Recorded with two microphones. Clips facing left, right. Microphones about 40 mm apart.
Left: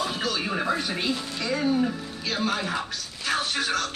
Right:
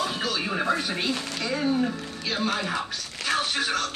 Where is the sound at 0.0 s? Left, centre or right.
Centre.